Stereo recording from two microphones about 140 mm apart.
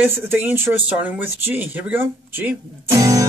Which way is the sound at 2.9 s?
25° right (ahead or behind).